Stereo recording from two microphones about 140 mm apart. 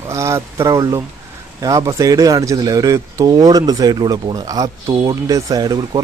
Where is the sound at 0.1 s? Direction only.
20° right (ahead or behind).